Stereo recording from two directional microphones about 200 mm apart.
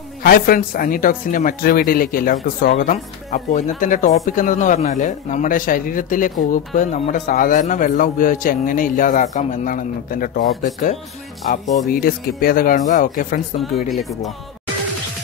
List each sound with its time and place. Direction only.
0.2 s a man's voice: 45° left (ahead or behind)